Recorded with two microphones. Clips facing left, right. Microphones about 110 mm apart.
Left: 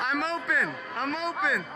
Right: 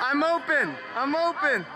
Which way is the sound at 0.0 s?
Centre (ahead or behind).